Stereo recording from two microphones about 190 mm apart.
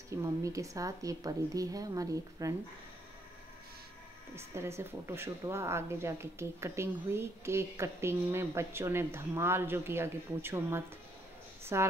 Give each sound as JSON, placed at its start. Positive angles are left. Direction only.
{"t": 0.2, "sound": "speech", "side_deg": -15}
{"t": 4.4, "sound": "speech", "side_deg": -15}